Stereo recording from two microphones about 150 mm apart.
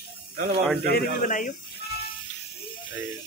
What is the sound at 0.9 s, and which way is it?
Speech, 60° left (ahead or behind).